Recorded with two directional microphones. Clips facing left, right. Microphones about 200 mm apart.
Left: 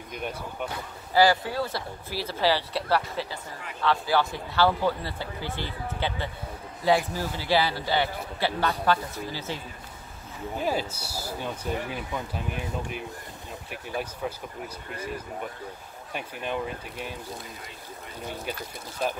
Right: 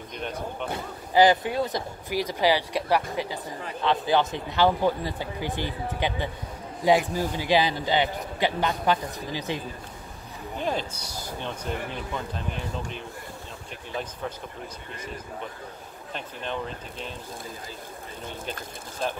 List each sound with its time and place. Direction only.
0.1 s speech: 10° left (ahead or behind)
1.1 s a man's voice: 20° right (ahead or behind)
10.6 s speech: 5° left (ahead or behind)
13.7 s speech: 10° left (ahead or behind)
16.1 s speech: 10° left (ahead or behind)